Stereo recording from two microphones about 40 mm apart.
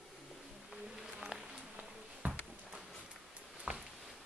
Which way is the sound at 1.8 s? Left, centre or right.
Right.